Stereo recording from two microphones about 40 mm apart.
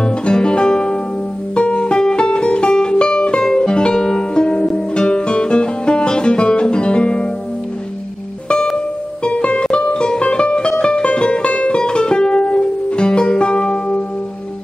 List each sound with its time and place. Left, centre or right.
0.0 s music: left
9.2 s music: left